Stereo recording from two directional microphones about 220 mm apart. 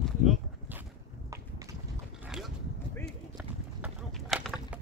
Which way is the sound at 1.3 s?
15° right (ahead or behind).